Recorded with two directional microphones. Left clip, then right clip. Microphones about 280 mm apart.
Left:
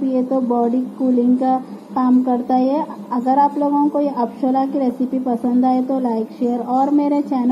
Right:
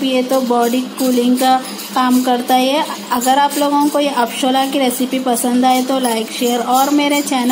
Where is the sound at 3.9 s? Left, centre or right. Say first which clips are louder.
Right 4 dB; right.